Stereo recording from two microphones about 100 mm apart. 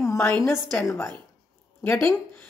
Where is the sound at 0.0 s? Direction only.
30° left (ahead or behind).